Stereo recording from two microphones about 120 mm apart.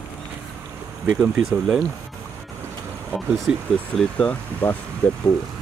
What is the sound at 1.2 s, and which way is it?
Speech, 5° right (ahead or behind).